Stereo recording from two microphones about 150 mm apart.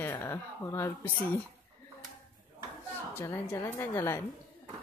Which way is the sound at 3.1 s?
15° left (ahead or behind).